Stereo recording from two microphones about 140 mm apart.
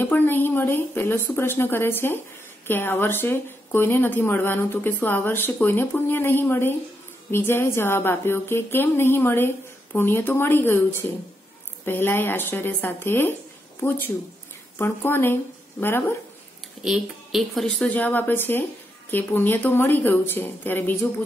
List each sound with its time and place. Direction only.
0.0 s a woman's voice: 15° left (ahead or behind)
16.8 s a woman's voice: 5° right (ahead or behind); by 21.1 s 15° left (ahead or behind)